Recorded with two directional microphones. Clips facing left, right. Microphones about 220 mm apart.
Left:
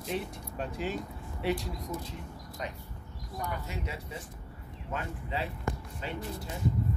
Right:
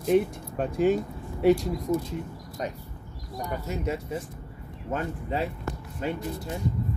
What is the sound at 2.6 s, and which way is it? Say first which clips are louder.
Speech: right 7 dB; 40° right (ahead or behind).